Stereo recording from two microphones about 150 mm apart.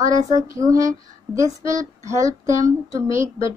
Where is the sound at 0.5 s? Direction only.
20° right (ahead or behind).